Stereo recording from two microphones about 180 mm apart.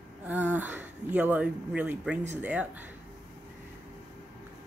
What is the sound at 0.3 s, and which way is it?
Speech, 10° right (ahead or behind).